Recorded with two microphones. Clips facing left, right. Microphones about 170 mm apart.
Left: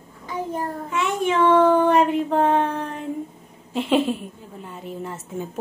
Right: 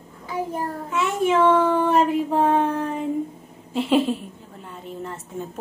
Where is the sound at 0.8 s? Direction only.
Centre (ahead or behind).